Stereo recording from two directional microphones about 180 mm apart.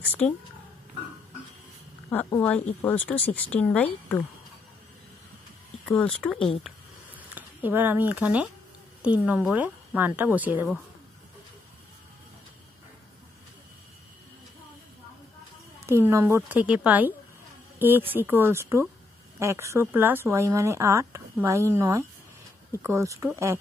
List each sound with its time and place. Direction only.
0.2 s speech: 5° left (ahead or behind)
2.0 s speech: 15° left (ahead or behind)
5.9 s speech: 5° left (ahead or behind)
6.6 s a sound: 10° right (ahead or behind)
9.0 s speech: 10° right (ahead or behind)
15.8 s speech: 15° right (ahead or behind)